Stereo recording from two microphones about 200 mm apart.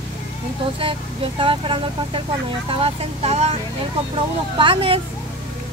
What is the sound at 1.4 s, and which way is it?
Speech, 25° right (ahead or behind).